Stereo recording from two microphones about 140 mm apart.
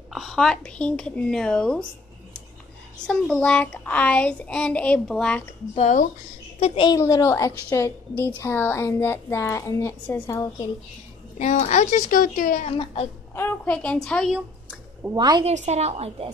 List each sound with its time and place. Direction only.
0.1 s speech: centre (ahead or behind)
3.1 s speech: 5° left (ahead or behind)
5.8 s speech: 55° left (ahead or behind)
6.6 s a sound: 45° left (ahead or behind)
7.0 s a woman's voice: 20° left (ahead or behind)
11.3 s a woman's voice: 55° left (ahead or behind); by 12.6 s 80° left
12.7 s a sound: 45° left (ahead or behind)
13.3 s speech: 15° left (ahead or behind)
14.3 s a sound: 5° right (ahead or behind)
15.1 s a woman's voice: 30° right (ahead or behind)
15.4 s a woman's voice: 55° right (ahead or behind)